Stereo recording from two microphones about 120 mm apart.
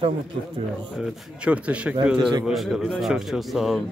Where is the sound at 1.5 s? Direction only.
10° right (ahead or behind).